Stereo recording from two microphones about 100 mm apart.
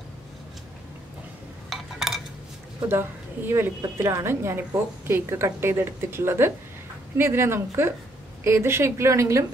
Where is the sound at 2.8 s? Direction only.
25° right (ahead or behind).